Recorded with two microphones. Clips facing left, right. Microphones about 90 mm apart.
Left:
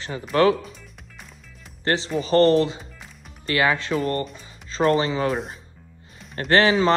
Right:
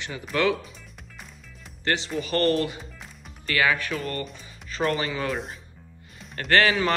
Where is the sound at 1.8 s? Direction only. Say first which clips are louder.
Left 4 dB; 35° left (ahead or behind).